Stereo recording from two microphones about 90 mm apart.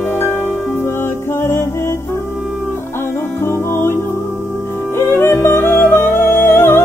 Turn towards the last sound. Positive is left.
turn(degrees=25)  # may be behind; listen again after turning